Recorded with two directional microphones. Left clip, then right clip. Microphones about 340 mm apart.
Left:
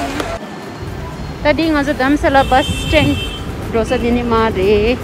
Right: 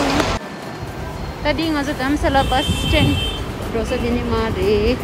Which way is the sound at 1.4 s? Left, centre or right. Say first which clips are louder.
Left 6 dB; centre.